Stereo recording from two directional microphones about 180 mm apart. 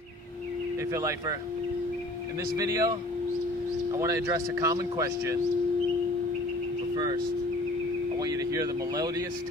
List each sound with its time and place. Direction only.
0.9 s speech: 15° right (ahead or behind)
2.5 s speech: 20° right (ahead or behind)
8.2 s speech: 20° right (ahead or behind)